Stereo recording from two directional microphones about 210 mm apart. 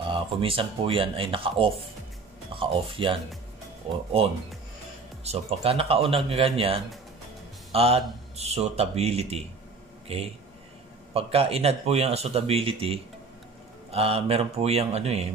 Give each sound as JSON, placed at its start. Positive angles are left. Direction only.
{"t": 0.1, "sound": "a man's voice", "side_deg": -25}
{"t": 5.2, "sound": "a man's voice", "side_deg": -30}